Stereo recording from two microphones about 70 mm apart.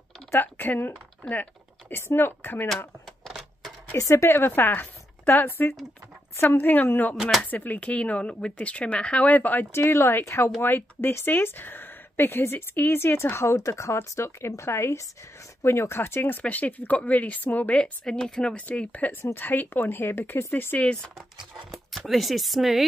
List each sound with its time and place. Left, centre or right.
0.3 s speech: left
3.3 s typewriter: centre
3.9 s a woman's voice: left
9.7 s speech: left
21.9 s speech: centre